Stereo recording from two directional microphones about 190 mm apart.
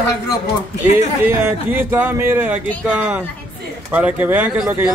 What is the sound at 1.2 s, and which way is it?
Speech, 10° right (ahead or behind).